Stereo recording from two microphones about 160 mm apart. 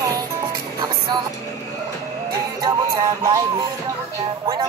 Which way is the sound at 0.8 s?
25° right (ahead or behind).